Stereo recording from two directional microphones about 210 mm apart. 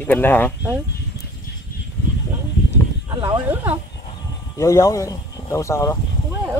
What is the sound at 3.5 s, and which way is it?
Speech, 10° right (ahead or behind).